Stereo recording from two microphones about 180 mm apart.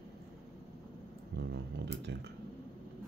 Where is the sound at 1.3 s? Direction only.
70° right (ahead or behind).